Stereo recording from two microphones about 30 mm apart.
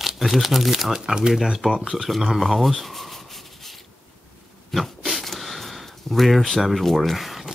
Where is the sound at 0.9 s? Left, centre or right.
Right.